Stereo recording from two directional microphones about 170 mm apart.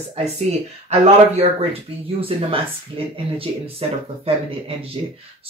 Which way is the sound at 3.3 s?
35° right (ahead or behind).